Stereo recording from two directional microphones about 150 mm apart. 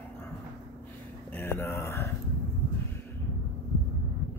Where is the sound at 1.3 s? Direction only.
15° left (ahead or behind).